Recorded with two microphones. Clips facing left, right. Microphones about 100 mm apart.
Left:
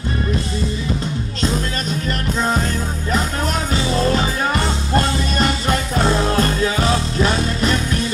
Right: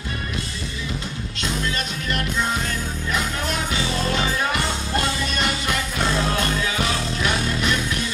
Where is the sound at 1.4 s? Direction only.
35° left (ahead or behind).